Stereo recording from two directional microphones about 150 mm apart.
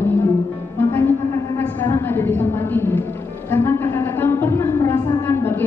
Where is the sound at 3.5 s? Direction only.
15° left (ahead or behind).